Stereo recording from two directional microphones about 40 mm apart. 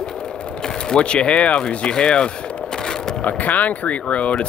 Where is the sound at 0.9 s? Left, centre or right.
Left.